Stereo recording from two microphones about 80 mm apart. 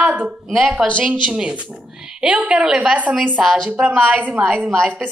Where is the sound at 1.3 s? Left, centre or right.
Centre.